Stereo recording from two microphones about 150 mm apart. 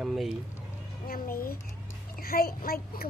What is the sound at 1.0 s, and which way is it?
A child's voice, 75° left (ahead or behind).